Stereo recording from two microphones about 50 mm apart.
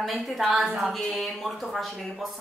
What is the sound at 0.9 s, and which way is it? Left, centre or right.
Speech, centre.